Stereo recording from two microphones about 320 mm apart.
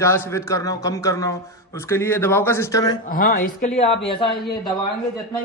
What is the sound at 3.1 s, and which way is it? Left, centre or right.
Speech, left.